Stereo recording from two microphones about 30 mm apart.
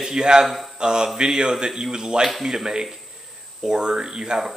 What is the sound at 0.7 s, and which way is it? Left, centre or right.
Speech, right.